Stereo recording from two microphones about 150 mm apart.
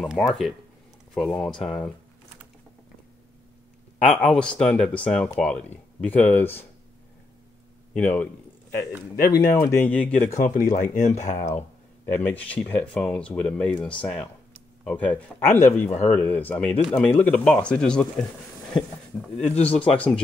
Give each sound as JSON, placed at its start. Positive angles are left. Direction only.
{"t": 0.0, "sound": "speech", "side_deg": 0}
{"t": 4.1, "sound": "speech", "side_deg": 5}
{"t": 7.9, "sound": "speech", "side_deg": 10}
{"t": 9.5, "sound": "speech", "side_deg": 15}
{"t": 10.4, "sound": "speech", "side_deg": 60}
{"t": 12.1, "sound": "speech", "side_deg": 10}